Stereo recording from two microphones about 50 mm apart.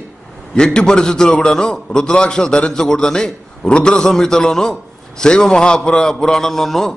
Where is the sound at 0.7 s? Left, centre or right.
Centre.